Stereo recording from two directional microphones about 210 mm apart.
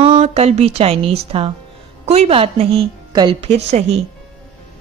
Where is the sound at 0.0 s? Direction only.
25° right (ahead or behind).